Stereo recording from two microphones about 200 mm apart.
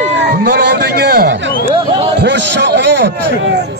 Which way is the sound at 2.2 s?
60° right (ahead or behind).